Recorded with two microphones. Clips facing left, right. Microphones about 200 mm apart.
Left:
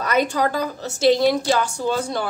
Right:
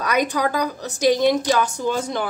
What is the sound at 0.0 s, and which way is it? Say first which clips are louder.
A woman's voice: left 1 dB; 15° right (ahead or behind).